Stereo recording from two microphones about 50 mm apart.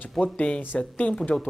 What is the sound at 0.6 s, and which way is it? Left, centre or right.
Speech, left.